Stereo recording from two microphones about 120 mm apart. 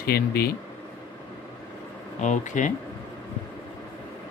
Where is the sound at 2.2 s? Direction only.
90° left.